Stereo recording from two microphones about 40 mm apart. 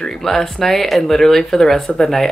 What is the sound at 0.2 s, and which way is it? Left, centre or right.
Speech, centre.